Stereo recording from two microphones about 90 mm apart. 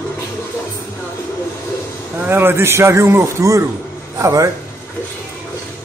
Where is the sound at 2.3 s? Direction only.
25° right (ahead or behind).